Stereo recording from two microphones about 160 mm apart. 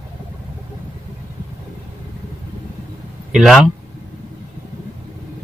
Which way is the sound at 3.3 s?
Centre (ahead or behind).